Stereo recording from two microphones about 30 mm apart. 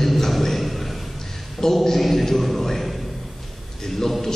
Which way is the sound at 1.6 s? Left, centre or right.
Left.